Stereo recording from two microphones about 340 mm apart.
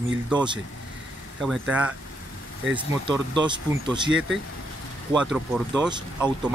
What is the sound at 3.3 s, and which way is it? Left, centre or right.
Speech, centre.